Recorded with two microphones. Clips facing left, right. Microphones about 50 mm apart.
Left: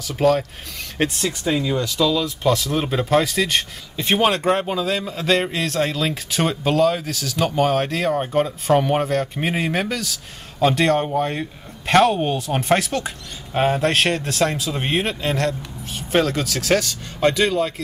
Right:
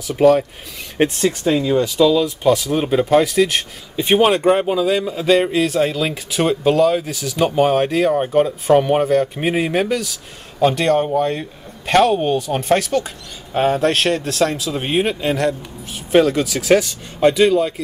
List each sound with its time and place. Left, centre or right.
0.1 s a man's voice: centre
0.9 s a man's voice: centre
7.0 s a man's voice: centre